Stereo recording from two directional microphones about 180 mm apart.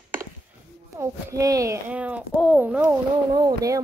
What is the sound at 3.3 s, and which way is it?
Speech, 20° right (ahead or behind).